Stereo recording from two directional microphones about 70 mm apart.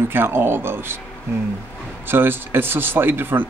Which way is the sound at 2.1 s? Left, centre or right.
Right.